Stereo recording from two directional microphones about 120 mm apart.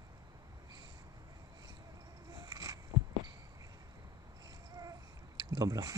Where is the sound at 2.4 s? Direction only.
30° right (ahead or behind).